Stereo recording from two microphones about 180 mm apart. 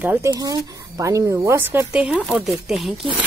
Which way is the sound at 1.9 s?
5° right (ahead or behind).